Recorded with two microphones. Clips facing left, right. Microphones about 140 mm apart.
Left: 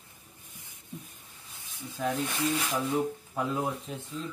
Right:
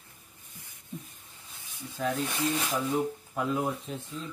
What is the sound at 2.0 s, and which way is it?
Speech, centre (ahead or behind).